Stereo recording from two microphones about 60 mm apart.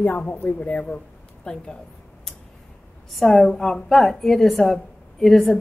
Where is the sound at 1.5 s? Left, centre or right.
Centre.